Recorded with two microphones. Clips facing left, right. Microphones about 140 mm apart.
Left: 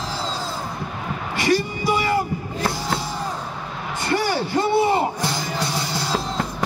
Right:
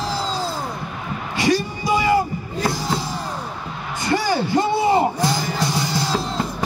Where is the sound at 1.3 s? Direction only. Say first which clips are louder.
Right 1 dB; 15° right (ahead or behind).